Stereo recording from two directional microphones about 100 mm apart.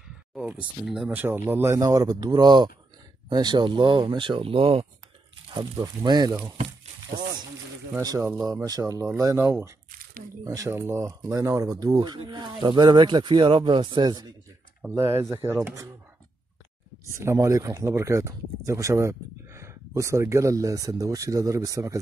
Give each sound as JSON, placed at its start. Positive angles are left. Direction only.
{"t": 1.0, "sound": "speech", "side_deg": -15}
{"t": 1.8, "sound": "speech", "side_deg": -40}
{"t": 5.5, "sound": "speech", "side_deg": -50}
{"t": 8.0, "sound": "speech", "side_deg": -40}
{"t": 10.7, "sound": "speech", "side_deg": -25}
{"t": 15.0, "sound": "speech", "side_deg": -30}
{"t": 17.0, "sound": "speech", "side_deg": -30}